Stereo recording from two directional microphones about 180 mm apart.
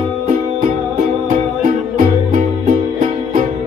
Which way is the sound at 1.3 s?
45° right (ahead or behind).